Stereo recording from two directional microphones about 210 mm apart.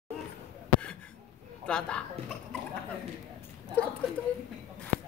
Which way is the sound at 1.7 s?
5° left (ahead or behind).